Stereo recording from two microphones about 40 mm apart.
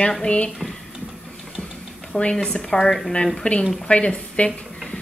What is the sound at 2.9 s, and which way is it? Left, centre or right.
Speech, centre.